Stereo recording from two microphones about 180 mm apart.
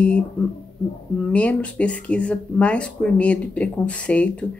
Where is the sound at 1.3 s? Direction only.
5° left (ahead or behind).